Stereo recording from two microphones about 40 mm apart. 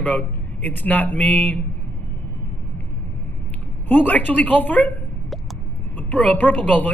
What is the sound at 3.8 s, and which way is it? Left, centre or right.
Speech, left.